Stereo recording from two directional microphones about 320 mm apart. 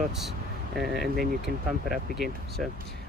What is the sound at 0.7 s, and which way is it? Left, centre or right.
Speech, centre.